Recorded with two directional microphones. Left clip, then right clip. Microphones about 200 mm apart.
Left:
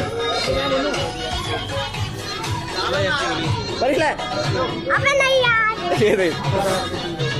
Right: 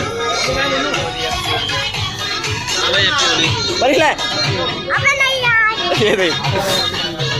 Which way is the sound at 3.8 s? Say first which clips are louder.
Right 5 dB; 15° right (ahead or behind).